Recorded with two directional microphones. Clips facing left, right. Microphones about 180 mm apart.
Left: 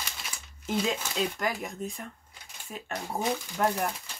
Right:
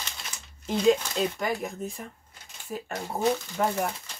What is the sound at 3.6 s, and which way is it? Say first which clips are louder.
Speech: right 1 dB; centre (ahead or behind).